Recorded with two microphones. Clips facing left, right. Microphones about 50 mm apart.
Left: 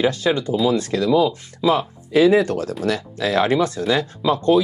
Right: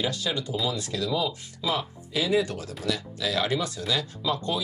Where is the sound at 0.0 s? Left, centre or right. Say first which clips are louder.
Left 10 dB; left.